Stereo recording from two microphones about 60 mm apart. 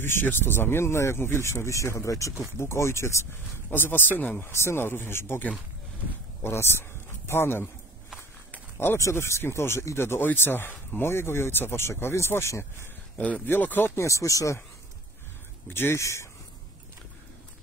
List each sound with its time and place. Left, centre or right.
0.0 s speech: left
3.7 s speech: left
4.4 s speech: left
6.4 s speech: left
9.1 s speech: left
13.5 s speech: left
13.9 s speech: left
15.7 s speech: left
16.0 s speech: left